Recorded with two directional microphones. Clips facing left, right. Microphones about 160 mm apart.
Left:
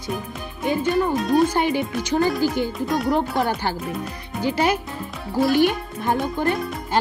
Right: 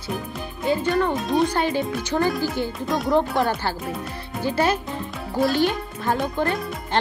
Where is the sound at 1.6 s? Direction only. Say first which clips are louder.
Left 1 dB; 15° left (ahead or behind).